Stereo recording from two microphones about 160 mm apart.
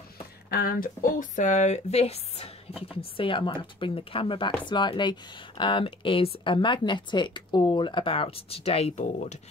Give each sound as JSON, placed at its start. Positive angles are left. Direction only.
{"t": 0.5, "sound": "speech", "side_deg": 65}